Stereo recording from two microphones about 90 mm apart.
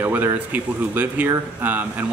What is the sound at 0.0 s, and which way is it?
A man's voice, 20° right (ahead or behind).